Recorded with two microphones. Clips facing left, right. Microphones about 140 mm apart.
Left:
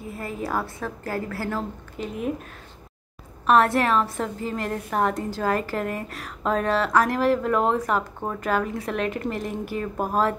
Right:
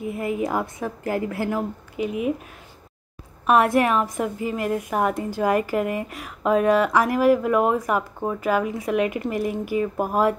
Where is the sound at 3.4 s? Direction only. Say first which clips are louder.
Right 1 dB; 10° right (ahead or behind).